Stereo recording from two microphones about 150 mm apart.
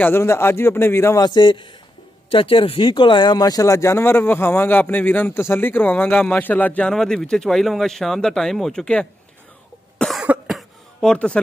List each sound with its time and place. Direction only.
0.0 s speech: 15° left (ahead or behind)
9.9 s cough: centre (ahead or behind)